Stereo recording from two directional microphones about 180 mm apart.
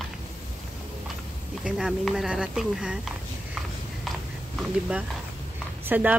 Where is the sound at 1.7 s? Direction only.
5° right (ahead or behind).